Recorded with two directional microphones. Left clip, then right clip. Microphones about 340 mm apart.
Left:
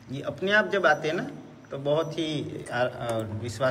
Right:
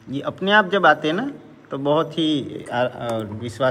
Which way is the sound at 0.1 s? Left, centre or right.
Centre.